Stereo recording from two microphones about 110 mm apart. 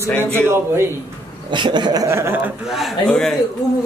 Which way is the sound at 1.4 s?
45° right (ahead or behind).